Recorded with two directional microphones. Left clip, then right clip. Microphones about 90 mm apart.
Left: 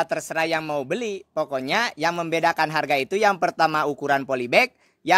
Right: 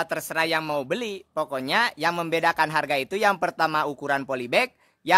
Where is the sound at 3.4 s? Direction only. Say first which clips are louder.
Left 3 dB; 35° left (ahead or behind).